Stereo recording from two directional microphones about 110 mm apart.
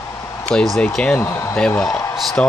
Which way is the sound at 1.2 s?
25° left (ahead or behind).